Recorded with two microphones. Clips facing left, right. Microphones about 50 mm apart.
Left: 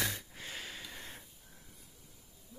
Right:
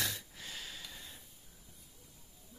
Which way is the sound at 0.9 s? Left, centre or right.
Left.